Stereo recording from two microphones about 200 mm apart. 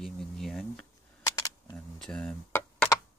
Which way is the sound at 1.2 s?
20° left (ahead or behind).